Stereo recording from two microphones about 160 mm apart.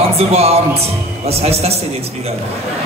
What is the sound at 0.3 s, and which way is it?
A man's voice, 40° right (ahead or behind).